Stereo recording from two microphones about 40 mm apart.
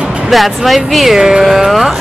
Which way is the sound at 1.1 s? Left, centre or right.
Centre.